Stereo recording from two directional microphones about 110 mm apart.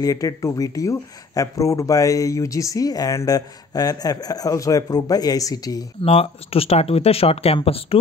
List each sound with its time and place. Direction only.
0.0 s speech: 30° left (ahead or behind)
6.0 s speech: 60° left (ahead or behind)